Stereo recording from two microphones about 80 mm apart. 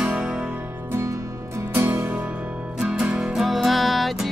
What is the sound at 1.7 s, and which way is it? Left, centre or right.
Music, right.